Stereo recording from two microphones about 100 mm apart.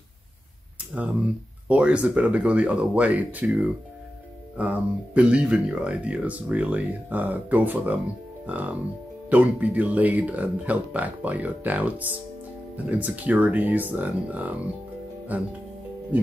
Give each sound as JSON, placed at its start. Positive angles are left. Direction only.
{"t": 0.9, "sound": "speech", "side_deg": -15}
{"t": 4.6, "sound": "speech", "side_deg": -15}